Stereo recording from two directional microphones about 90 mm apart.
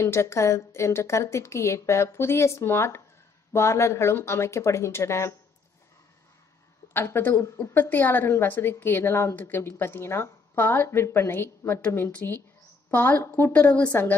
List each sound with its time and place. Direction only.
0.0 s a woman's voice: 30° left (ahead or behind)
6.9 s a woman's voice: 25° left (ahead or behind)